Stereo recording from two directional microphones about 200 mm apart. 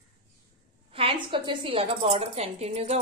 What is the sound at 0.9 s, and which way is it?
A woman's voice, 25° right (ahead or behind).